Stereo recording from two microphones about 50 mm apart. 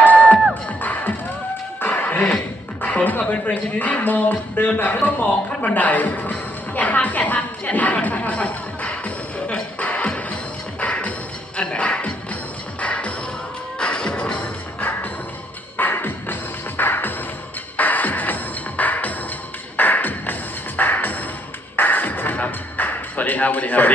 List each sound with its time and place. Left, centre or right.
0.0 s music: left
3.3 s a sound: left
12.8 s music: left
14.8 s music: left